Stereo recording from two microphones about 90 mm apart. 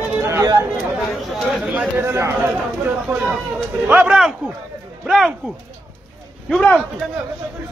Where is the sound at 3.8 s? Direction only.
10° right (ahead or behind).